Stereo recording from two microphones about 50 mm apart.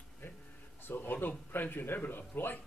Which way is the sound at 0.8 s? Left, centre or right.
Left.